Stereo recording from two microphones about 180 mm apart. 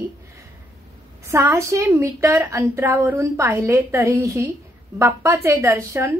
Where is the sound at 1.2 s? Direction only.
15° right (ahead or behind).